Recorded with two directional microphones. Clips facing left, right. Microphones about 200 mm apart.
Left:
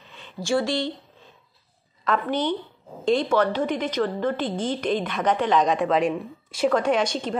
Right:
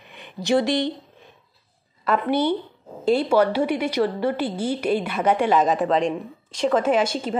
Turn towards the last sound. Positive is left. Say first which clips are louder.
# right 2 dB
turn(degrees=-5)  # may be behind; listen again after turning